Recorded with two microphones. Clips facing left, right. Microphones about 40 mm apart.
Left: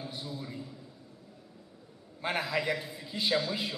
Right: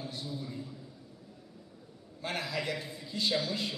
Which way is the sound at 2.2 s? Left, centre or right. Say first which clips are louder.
Left 4 dB; centre.